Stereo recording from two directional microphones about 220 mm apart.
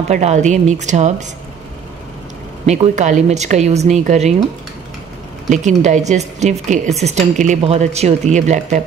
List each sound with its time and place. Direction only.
0.1 s a woman's voice: 30° right (ahead or behind)
2.6 s a woman's voice: 30° right (ahead or behind)
5.5 s a woman's voice: 35° right (ahead or behind)